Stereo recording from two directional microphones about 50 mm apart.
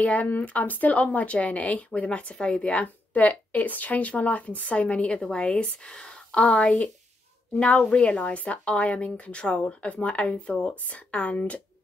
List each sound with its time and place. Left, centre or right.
0.0 s a woman's voice: left